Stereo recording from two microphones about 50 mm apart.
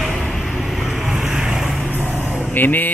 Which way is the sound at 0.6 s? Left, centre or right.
Centre.